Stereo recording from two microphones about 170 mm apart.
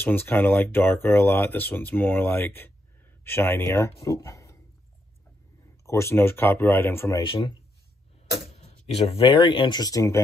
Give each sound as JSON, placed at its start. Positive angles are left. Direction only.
{"t": 0.0, "sound": "speech", "side_deg": 10}
{"t": 5.9, "sound": "speech", "side_deg": 15}
{"t": 7.2, "sound": "speech", "side_deg": 25}
{"t": 8.5, "sound": "speech", "side_deg": 35}